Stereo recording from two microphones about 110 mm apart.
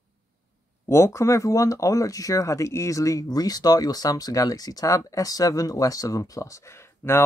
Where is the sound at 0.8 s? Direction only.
25° left (ahead or behind).